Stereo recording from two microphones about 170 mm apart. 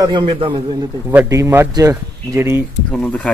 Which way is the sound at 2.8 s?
5° left (ahead or behind).